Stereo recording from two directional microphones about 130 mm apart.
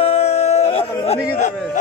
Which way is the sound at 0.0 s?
55° left (ahead or behind).